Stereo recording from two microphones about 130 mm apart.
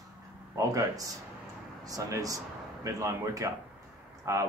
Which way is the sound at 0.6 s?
25° right (ahead or behind).